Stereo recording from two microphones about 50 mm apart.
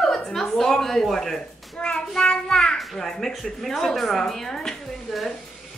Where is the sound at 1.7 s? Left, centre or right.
Centre.